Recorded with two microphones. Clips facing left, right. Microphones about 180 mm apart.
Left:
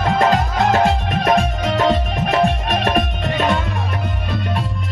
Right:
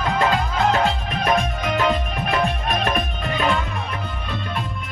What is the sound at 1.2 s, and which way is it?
Music, 30° left (ahead or behind).